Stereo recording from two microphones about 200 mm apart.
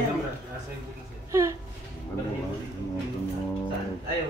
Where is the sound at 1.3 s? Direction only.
15° right (ahead or behind).